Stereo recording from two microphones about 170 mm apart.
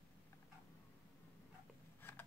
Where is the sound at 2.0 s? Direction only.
10° left (ahead or behind).